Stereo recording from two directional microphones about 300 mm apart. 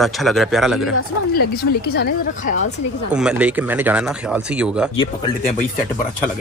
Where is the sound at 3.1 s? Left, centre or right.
Centre.